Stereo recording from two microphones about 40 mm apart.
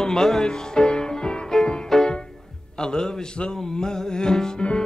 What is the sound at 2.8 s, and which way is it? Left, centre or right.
Speech, centre.